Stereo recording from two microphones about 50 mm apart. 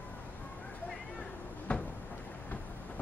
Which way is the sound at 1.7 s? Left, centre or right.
Left.